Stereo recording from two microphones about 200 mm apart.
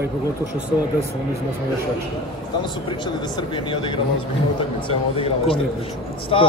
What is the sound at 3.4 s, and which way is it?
Speech, 25° left (ahead or behind).